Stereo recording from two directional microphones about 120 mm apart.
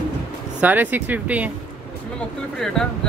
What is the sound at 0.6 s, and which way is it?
Speech, 15° right (ahead or behind).